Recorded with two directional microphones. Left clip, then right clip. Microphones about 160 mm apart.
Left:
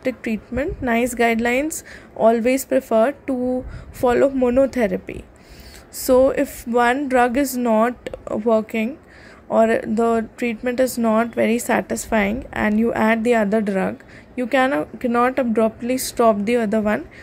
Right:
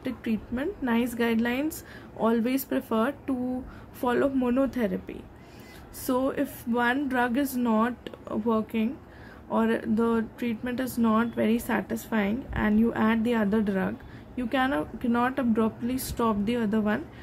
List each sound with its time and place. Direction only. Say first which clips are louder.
0.0 s a woman's voice: left 9 dB; 30° left (ahead or behind)